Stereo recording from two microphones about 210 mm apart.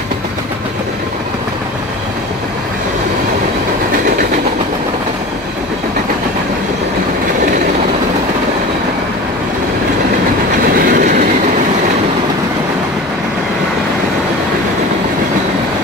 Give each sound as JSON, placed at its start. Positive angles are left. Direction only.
{"t": 10.9, "sound": "train", "side_deg": -40}